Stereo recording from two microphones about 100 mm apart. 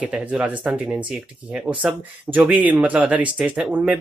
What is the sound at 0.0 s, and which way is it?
Speech, 10° right (ahead or behind).